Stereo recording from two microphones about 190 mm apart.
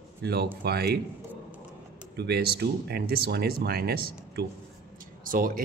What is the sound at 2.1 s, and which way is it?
Speech, 60° right (ahead or behind).